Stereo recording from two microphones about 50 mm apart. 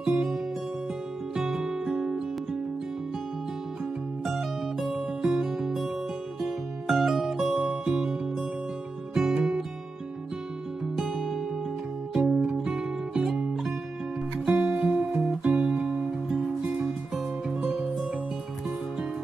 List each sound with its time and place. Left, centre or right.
0.0 s music: right
4.2 s music: centre
6.9 s music: centre
11.0 s music: centre
14.4 s music: right
16.8 s music: centre